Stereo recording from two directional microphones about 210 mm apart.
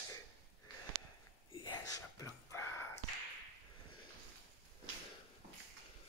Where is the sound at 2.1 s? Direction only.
10° left (ahead or behind).